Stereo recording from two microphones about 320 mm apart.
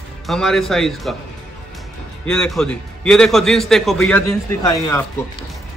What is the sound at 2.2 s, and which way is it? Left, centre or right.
A man's voice, centre.